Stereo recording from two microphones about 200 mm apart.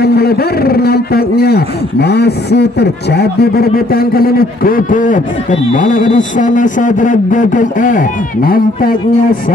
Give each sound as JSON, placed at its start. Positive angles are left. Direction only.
{"t": 0.0, "sound": "a man's voice", "side_deg": 50}